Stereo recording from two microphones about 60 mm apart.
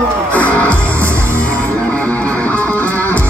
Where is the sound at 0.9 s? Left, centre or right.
Right.